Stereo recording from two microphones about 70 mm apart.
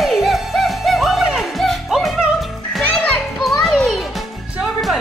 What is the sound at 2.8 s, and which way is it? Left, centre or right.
Children playing, centre.